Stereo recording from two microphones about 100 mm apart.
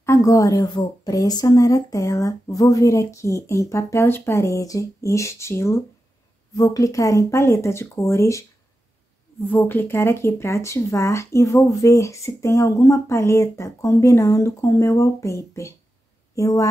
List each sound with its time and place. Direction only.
0.0 s speech: 30° left (ahead or behind)
9.5 s a woman's voice: 20° left (ahead or behind)